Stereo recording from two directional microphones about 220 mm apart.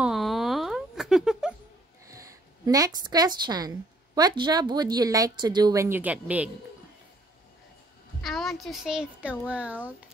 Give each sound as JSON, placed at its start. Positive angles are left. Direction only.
{"t": 0.0, "sound": "a sound", "side_deg": 0}
{"t": 2.0, "sound": "a woman's voice", "side_deg": -15}
{"t": 8.2, "sound": "a child's voice", "side_deg": 0}